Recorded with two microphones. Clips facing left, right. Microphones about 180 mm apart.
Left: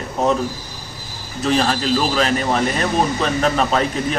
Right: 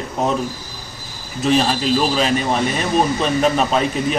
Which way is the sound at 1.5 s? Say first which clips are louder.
Right 1 dB; 15° right (ahead or behind).